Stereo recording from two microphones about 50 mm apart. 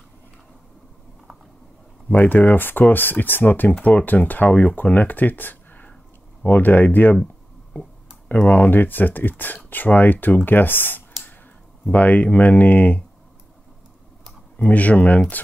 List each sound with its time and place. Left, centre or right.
2.0 s speech: left
8.5 s speech: left
11.8 s speech: left
14.6 s speech: left